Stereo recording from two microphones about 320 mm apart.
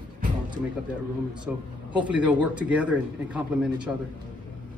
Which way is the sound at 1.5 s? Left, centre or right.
Centre.